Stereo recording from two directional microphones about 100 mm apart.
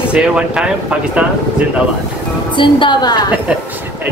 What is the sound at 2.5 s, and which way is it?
Speech, 55° left (ahead or behind).